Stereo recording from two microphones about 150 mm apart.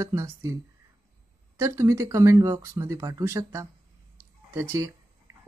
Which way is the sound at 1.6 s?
20° right (ahead or behind).